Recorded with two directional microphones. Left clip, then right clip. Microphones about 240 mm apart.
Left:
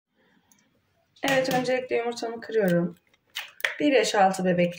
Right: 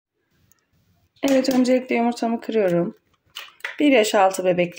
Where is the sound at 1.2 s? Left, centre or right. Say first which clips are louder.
Right 4 dB; right.